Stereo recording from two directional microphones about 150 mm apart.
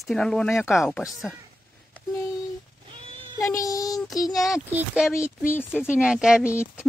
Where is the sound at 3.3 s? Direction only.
20° left (ahead or behind).